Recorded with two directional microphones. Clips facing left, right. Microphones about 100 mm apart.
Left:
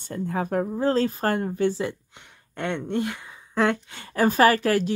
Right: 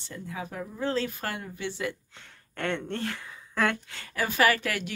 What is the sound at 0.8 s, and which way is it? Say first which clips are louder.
Speech: left 5 dB; 40° left (ahead or behind).